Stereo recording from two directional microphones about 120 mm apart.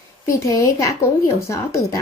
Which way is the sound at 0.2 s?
25° left (ahead or behind).